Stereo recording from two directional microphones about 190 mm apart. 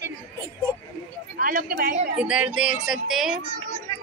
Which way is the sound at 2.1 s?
5° right (ahead or behind).